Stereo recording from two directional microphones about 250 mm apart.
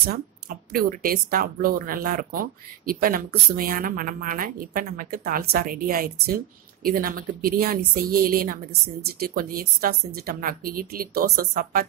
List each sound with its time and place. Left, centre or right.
0.0 s speech: right